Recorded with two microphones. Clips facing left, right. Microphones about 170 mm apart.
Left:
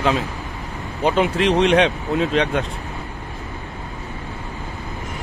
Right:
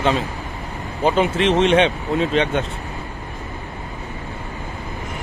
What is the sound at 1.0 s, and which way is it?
Speech, centre (ahead or behind).